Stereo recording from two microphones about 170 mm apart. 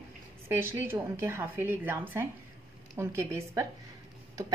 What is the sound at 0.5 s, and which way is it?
A woman's voice, 15° right (ahead or behind).